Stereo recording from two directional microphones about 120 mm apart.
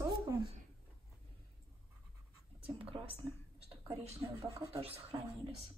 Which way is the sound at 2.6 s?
50° right (ahead or behind).